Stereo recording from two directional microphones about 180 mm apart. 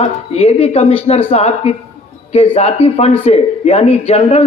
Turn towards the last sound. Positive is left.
turn(degrees=35)  # may be behind; listen again after turning